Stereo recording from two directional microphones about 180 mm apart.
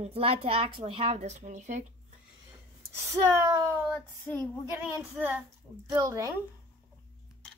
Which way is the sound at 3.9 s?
10° left (ahead or behind).